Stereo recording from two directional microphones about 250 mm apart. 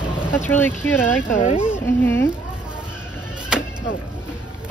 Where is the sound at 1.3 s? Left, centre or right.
Left.